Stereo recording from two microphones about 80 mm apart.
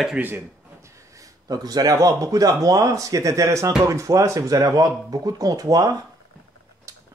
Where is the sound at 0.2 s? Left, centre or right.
Centre.